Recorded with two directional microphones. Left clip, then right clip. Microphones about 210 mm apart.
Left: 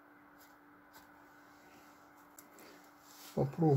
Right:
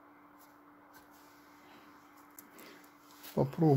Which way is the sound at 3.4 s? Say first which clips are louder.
Right 3 dB; 30° right (ahead or behind).